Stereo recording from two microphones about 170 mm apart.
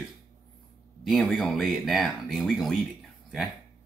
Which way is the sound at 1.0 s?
Centre (ahead or behind).